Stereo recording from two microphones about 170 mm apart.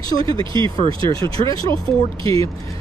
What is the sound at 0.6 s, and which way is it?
Speech, 30° right (ahead or behind).